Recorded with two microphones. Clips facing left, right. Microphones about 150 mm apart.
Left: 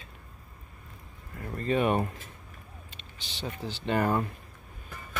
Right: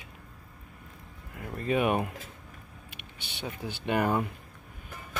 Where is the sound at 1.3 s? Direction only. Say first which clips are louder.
Even; 10° right (ahead or behind).